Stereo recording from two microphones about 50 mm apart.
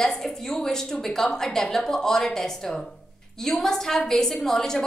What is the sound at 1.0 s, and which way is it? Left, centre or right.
A woman's voice, centre.